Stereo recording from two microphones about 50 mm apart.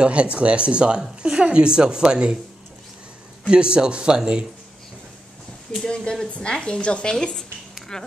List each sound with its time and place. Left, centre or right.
0.0 s a woman's voice: right
3.4 s speech: centre
5.9 s speech: centre